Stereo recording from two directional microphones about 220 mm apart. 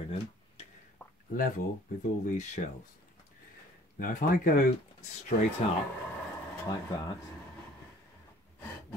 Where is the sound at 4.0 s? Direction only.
40° left (ahead or behind).